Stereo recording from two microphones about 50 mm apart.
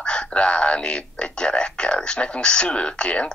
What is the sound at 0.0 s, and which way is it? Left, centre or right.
Speech, centre.